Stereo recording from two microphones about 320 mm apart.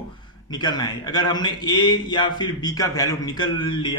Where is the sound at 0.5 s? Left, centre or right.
Centre.